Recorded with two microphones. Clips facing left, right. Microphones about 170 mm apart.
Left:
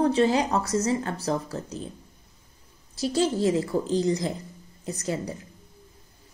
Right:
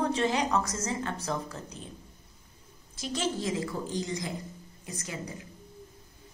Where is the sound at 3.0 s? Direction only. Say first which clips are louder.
Left 8 dB; 35° left (ahead or behind).